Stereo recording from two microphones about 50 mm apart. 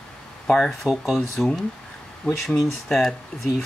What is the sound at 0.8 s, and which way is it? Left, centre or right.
Speech, centre.